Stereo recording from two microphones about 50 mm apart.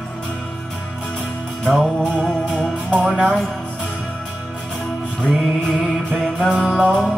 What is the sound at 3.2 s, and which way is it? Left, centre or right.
Music, centre.